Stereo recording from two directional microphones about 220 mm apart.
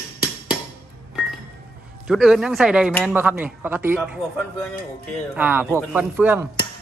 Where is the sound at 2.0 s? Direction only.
Centre (ahead or behind).